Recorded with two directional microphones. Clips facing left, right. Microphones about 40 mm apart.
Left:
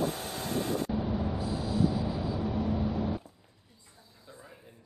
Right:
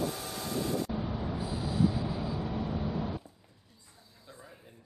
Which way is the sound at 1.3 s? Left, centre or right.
Centre.